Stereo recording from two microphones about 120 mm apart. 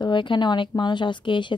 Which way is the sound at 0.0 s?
40° left (ahead or behind).